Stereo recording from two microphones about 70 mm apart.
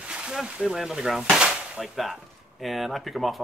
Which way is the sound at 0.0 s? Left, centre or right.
Centre.